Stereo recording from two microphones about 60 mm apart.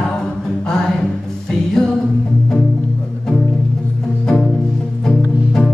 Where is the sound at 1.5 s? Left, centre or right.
Centre.